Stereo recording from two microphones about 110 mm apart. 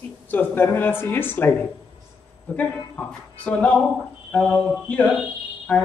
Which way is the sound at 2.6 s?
15° left (ahead or behind).